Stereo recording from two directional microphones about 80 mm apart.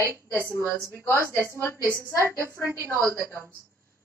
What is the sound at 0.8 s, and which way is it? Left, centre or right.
A woman's voice, left.